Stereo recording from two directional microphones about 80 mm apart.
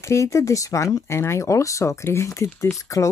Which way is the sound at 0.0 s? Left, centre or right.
Left.